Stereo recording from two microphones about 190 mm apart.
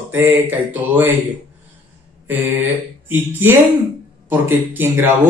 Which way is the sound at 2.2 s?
10° right (ahead or behind).